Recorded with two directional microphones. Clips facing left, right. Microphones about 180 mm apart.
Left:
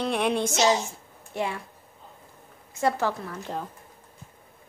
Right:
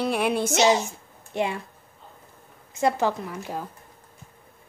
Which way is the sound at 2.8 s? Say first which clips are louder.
Right 2 dB; 15° right (ahead or behind).